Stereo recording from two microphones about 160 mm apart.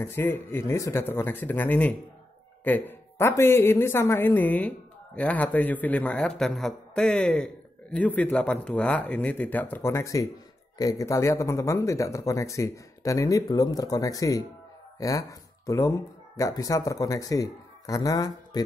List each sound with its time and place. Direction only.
0.0 s speech: 15° left (ahead or behind)